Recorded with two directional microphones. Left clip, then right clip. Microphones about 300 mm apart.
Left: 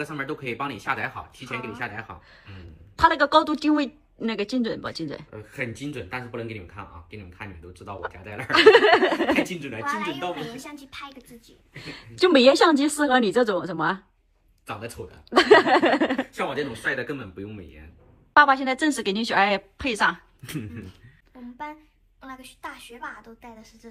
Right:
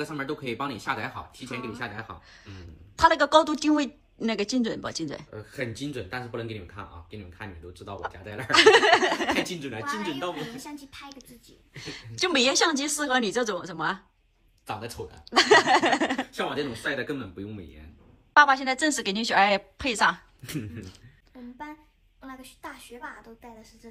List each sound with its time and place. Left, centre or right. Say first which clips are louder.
0.0 s a woman's voice: left 2 dB; centre
14.7 s speech: even; centre
15.3 s a woman's voice: left 3 dB; centre
21.4 s a sound: left 2 dB; centre
22.2 s a woman's voice: left 3 dB; centre